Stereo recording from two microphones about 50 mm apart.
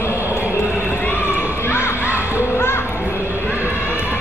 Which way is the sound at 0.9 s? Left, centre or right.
Left.